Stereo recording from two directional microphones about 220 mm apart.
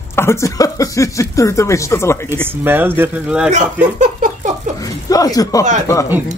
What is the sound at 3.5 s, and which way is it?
Speech, 35° right (ahead or behind).